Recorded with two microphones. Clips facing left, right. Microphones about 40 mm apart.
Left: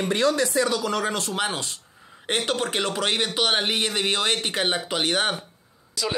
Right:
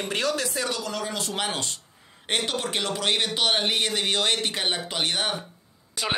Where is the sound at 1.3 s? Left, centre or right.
Centre.